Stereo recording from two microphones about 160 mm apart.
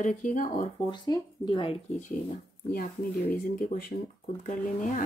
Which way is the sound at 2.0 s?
55° left (ahead or behind).